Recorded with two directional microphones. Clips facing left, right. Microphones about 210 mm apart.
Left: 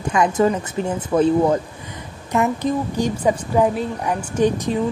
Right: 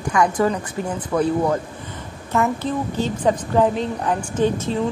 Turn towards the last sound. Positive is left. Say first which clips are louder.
# left 2 dB
turn(degrees=15)  # may be behind; listen again after turning